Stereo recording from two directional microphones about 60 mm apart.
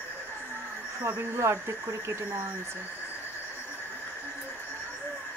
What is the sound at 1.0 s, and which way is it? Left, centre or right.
Speech, right.